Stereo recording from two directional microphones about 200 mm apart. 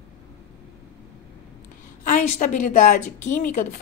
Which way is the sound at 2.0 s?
40° left (ahead or behind).